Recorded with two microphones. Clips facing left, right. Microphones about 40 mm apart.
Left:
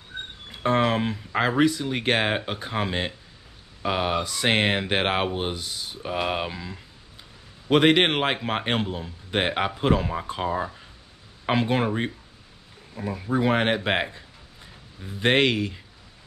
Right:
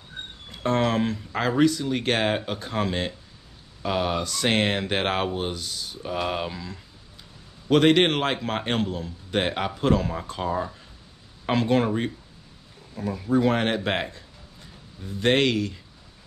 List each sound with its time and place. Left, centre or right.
0.5 s a man's voice: centre